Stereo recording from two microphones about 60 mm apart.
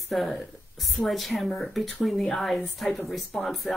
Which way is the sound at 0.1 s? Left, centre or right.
Centre.